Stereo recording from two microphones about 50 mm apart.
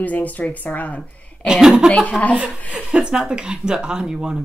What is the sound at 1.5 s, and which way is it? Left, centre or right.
Speech, centre.